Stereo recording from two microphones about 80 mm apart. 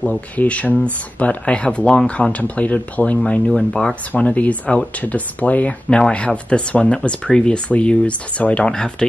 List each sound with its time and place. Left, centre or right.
0.0 s speech: centre
3.3 s speech: centre
4.1 s speech: centre